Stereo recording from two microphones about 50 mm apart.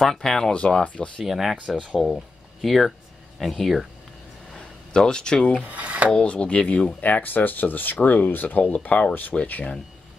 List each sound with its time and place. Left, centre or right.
0.0 s speech: centre; by 1.1 s left
1.2 s speech: centre
4.6 s a sound: centre
5.6 s speech: right
6.2 s speech: left
7.0 s speech: left
9.3 s speech: centre